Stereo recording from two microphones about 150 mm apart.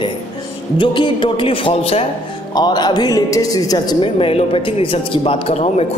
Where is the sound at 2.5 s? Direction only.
25° left (ahead or behind).